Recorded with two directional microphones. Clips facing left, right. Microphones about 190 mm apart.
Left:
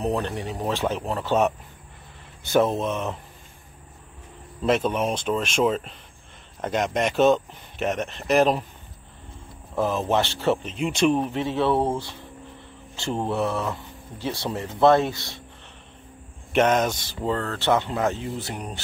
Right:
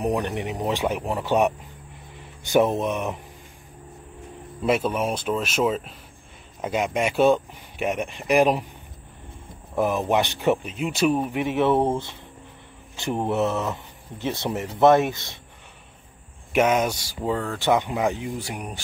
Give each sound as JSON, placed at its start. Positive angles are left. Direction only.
{"t": 0.0, "sound": "speech", "side_deg": -15}
{"t": 4.6, "sound": "speech", "side_deg": -10}
{"t": 9.8, "sound": "speech", "side_deg": -15}
{"t": 16.5, "sound": "speech", "side_deg": -10}